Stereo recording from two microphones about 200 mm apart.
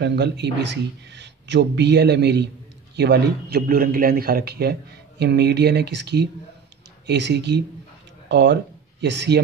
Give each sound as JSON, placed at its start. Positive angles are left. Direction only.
{"t": 0.0, "sound": "a man's voice", "side_deg": -55}